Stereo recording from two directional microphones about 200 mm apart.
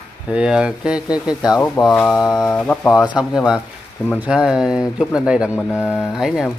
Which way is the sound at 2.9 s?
5° right (ahead or behind).